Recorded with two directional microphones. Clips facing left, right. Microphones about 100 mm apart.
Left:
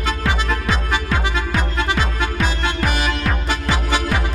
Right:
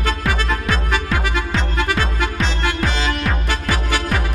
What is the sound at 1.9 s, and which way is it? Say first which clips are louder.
Music: even; 20° left (ahead or behind).